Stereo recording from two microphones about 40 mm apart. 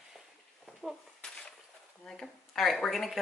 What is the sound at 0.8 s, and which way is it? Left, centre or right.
Speech, centre.